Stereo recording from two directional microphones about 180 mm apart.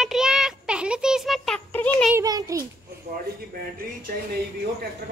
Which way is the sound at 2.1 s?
20° right (ahead or behind).